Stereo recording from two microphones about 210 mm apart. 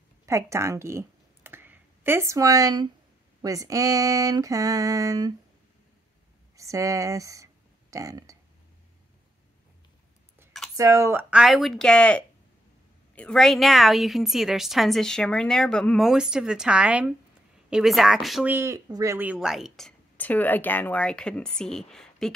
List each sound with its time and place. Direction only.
0.3 s speech: 15° right (ahead or behind)
6.5 s speech: 15° right (ahead or behind)
10.8 s speech: 15° right (ahead or behind); by 22.3 s centre (ahead or behind)